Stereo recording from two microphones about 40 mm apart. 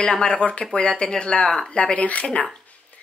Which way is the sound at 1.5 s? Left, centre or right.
Centre.